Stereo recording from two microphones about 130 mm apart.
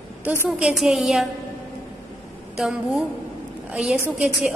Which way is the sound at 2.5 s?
5° right (ahead or behind).